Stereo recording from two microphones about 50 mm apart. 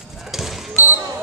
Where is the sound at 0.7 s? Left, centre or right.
Right.